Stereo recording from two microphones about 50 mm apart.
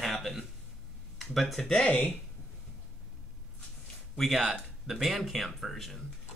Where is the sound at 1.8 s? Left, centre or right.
Left.